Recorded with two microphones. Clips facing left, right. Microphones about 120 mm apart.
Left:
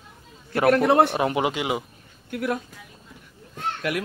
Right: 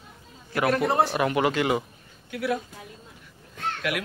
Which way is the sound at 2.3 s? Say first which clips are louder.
Left 1 dB; 50° left (ahead or behind).